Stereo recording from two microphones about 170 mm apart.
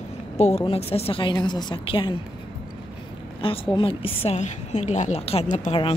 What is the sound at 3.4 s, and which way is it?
A woman's voice, 30° left (ahead or behind).